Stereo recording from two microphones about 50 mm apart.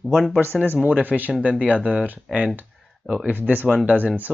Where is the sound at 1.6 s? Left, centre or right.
Right.